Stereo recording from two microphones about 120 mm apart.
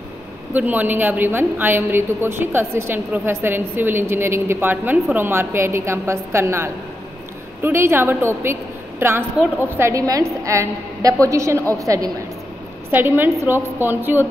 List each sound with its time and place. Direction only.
0.5 s a woman's voice: 15° right (ahead or behind)
12.9 s a woman's voice: 15° right (ahead or behind)